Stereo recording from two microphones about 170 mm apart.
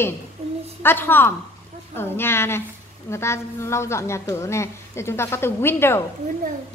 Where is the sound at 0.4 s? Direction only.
40° right (ahead or behind).